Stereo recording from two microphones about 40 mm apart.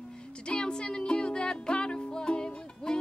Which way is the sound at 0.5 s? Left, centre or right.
Left.